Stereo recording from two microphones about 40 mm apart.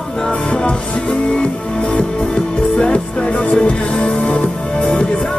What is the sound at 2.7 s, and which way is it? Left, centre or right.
Music, left.